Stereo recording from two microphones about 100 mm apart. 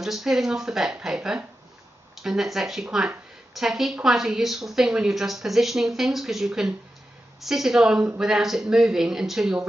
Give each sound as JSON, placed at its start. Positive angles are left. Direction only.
{"t": 0.0, "sound": "a woman's voice", "side_deg": -5}